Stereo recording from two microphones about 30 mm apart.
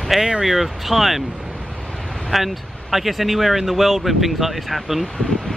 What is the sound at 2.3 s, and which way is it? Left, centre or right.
Speech, centre.